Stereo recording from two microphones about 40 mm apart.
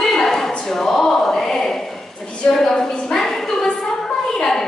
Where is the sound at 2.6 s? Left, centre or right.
Centre.